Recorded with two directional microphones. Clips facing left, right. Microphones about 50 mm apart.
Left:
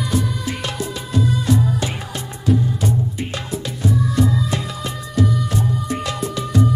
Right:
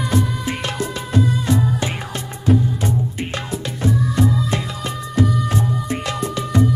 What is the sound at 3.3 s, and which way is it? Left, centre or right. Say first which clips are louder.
Music: right 1 dB; right.